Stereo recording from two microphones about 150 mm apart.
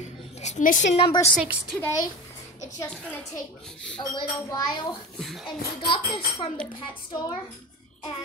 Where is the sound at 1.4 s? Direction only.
5° right (ahead or behind).